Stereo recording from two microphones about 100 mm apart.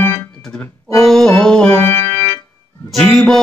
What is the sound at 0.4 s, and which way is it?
Organ, 5° left (ahead or behind).